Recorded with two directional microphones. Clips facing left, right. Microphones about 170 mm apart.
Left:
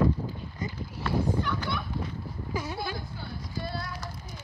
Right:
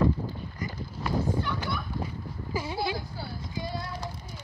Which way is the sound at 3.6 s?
15° right (ahead or behind).